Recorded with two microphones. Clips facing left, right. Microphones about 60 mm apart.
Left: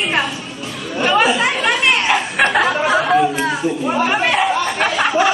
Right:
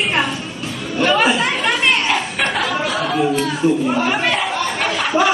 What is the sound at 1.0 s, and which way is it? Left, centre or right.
Chatter, centre.